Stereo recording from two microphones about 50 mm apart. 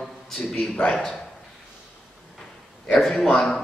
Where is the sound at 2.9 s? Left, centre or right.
Centre.